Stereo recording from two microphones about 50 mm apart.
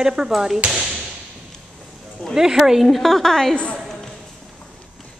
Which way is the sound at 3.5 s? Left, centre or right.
Left.